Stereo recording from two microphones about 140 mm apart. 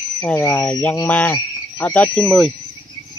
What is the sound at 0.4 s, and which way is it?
Speech, 15° left (ahead or behind).